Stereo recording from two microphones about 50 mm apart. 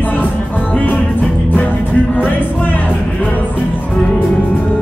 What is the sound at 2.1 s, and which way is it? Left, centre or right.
Music, left.